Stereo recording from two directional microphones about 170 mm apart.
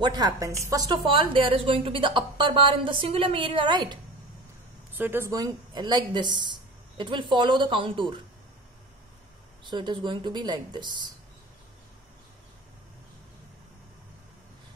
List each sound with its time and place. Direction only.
0.0 s a woman's voice: 25° right (ahead or behind)
4.9 s speech: 10° right (ahead or behind); by 8.2 s 30° right (ahead or behind)
9.7 s speech: 25° right (ahead or behind)